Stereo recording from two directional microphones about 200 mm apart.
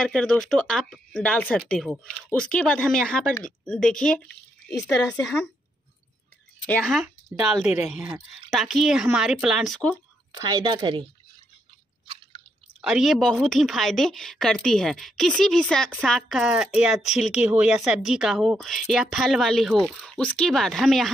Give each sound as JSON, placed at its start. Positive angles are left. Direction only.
{"t": 0.0, "sound": "speech", "side_deg": 5}
{"t": 6.6, "sound": "speech", "side_deg": 5}
{"t": 10.3, "sound": "speech", "side_deg": -20}
{"t": 12.8, "sound": "speech", "side_deg": 0}